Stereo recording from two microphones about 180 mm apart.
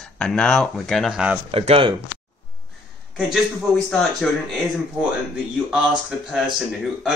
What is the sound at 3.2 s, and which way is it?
Speech, centre (ahead or behind).